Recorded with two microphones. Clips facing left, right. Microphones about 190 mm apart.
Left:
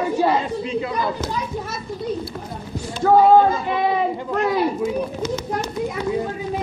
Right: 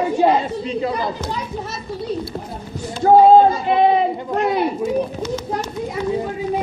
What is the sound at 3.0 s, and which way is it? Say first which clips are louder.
Speech: right 3 dB; 25° right (ahead or behind).